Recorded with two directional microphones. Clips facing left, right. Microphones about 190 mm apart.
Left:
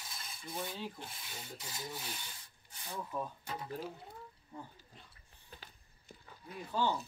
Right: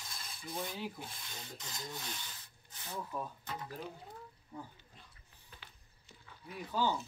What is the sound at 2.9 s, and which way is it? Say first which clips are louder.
Speech: left 1 dB; centre (ahead or behind).